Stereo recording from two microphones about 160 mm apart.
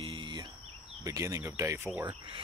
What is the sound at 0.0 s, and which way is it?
Cricket, 30° right (ahead or behind).